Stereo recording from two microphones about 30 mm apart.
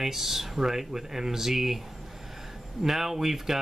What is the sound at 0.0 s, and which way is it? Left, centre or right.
Speech, centre.